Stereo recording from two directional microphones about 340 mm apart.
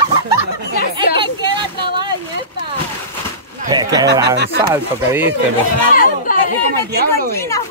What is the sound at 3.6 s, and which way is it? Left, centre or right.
Speech, centre.